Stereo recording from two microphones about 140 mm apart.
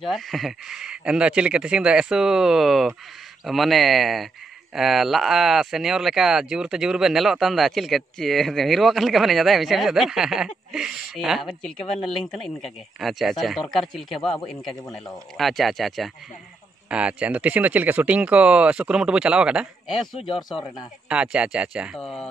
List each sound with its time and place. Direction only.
0.0 s speech: centre (ahead or behind)